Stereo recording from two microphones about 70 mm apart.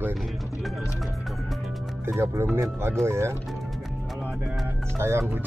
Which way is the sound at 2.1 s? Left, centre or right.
Right.